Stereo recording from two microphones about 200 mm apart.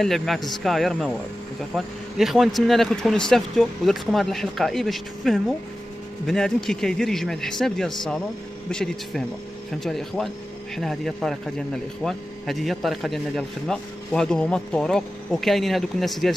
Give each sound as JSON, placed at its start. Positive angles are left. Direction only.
{"t": 0.0, "sound": "speech", "side_deg": 0}
{"t": 2.1, "sound": "speech", "side_deg": 0}